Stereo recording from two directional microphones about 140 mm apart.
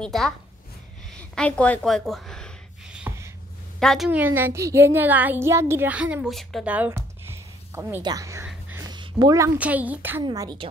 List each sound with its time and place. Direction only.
0.0 s a woman's voice: 5° left (ahead or behind)
3.1 s a sound: 15° right (ahead or behind)
3.8 s a woman's voice: centre (ahead or behind)
4.1 s a child's voice: 15° right (ahead or behind)
6.6 s a sound: 10° right (ahead or behind)
8.0 s a woman's voice: 25° right (ahead or behind)
8.8 s a sound: 30° right (ahead or behind)
9.6 s a child's voice: 10° right (ahead or behind)
10.2 s a woman's voice: 30° right (ahead or behind)